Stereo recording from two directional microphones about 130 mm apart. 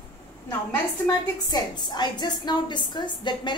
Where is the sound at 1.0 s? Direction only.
30° left (ahead or behind).